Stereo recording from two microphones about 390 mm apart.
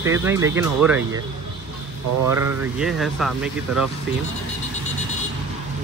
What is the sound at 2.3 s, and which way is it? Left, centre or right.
Speech, centre.